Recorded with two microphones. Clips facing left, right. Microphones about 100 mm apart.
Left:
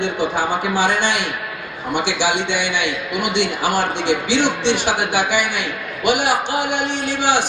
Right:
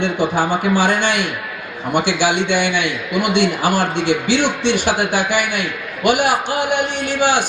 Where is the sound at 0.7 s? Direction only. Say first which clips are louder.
Even; 50° right (ahead or behind).